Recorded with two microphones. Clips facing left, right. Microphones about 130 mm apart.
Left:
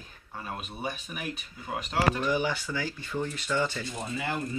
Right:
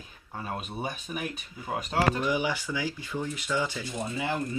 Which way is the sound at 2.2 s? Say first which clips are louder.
Even; 10° right (ahead or behind).